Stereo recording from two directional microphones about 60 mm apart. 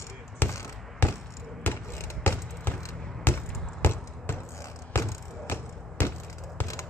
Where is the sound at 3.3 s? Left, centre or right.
Left.